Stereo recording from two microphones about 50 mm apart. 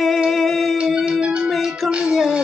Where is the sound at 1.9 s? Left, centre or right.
Centre.